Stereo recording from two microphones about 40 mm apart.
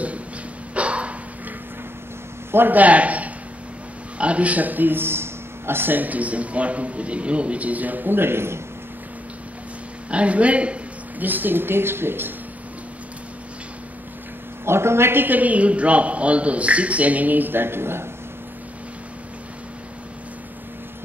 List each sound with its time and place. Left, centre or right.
0.7 s a sound: right
2.7 s a man's voice: right
6.0 s a man's voice: right
10.1 s a man's voice: right
11.1 s speech: right
14.6 s speech: right
15.2 s a man's voice: right